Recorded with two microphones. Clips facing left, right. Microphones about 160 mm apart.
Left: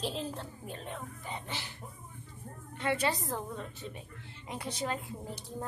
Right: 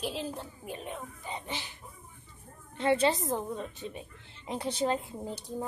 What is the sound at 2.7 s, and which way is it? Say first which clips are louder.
A woman's voice: right 5 dB; 25° right (ahead or behind).